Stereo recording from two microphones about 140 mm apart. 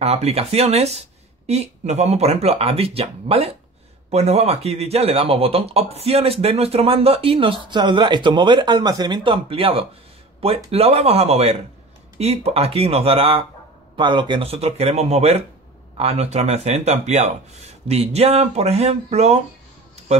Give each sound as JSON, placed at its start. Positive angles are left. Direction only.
{"t": 0.0, "sound": "speech", "side_deg": -50}